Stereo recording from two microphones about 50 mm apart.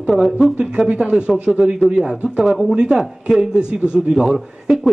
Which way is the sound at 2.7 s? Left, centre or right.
Centre.